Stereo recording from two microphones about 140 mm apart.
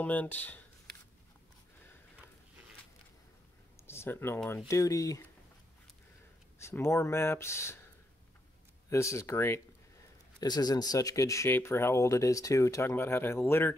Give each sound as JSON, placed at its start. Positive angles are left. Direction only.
{"t": 0.0, "sound": "speech", "side_deg": 10}
{"t": 3.8, "sound": "a sound", "side_deg": 15}
{"t": 4.6, "sound": "speech", "side_deg": 20}
{"t": 6.6, "sound": "speech", "side_deg": 20}
{"t": 8.9, "sound": "speech", "side_deg": 20}
{"t": 10.4, "sound": "speech", "side_deg": 30}